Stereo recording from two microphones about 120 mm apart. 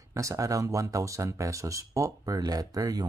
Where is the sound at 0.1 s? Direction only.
25° right (ahead or behind).